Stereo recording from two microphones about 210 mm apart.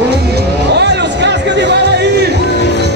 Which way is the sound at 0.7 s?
55° right (ahead or behind).